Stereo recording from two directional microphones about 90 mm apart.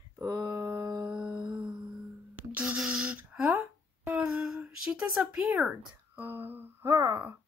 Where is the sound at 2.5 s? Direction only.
15° right (ahead or behind).